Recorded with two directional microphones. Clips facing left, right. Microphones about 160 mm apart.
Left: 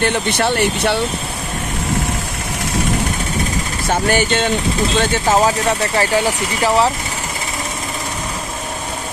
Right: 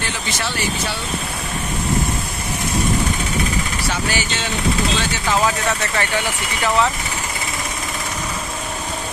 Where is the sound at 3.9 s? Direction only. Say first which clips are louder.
Left 11 dB; 55° left (ahead or behind); by 6.9 s 30° left (ahead or behind).